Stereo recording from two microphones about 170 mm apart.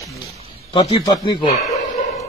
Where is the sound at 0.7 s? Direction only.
30° left (ahead or behind).